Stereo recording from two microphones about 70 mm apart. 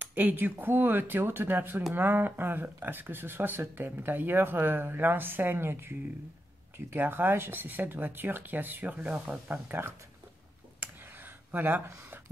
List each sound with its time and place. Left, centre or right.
0.0 s speech: right
9.7 s speech: right
10.8 s a sound: right